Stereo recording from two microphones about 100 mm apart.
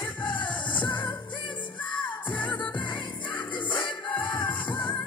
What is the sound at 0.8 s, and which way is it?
Music, 50° left (ahead or behind).